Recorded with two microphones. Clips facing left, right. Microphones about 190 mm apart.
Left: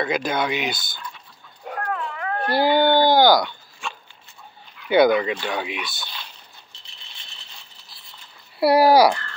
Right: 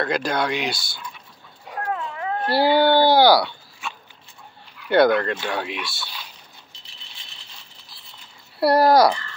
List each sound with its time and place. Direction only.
0.0 s speech: centre (ahead or behind)
1.9 s a sound: 20° right (ahead or behind)
2.5 s speech: 5° right (ahead or behind)
8.5 s speech: 5° left (ahead or behind)